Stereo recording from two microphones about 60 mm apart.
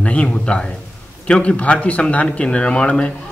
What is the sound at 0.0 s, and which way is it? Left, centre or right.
A man's voice, left.